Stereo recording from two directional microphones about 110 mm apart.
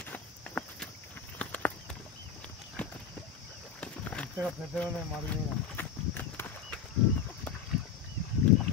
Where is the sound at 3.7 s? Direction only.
10° left (ahead or behind).